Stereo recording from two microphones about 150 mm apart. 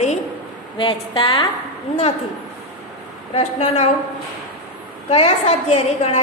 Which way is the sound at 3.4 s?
50° left (ahead or behind).